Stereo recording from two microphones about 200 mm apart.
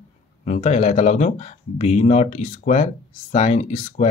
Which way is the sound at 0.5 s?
35° left (ahead or behind).